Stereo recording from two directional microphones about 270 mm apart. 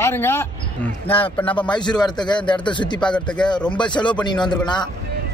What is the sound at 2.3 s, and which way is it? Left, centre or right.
Speech, centre.